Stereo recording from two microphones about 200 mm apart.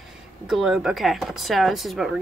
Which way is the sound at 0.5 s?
Centre (ahead or behind).